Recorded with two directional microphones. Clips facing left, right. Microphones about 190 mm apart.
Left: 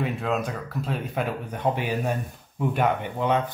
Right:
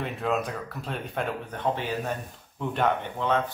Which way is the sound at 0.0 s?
Centre (ahead or behind).